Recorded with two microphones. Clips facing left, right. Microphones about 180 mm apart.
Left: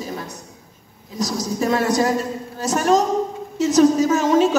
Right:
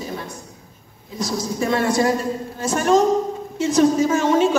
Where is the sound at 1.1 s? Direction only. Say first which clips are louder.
Left 1 dB; 40° left (ahead or behind).